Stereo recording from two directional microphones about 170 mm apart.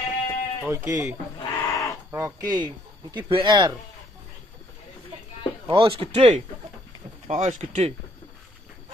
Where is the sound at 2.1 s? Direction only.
15° right (ahead or behind).